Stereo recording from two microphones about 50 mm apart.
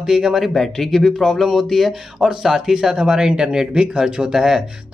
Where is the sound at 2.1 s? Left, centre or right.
Centre.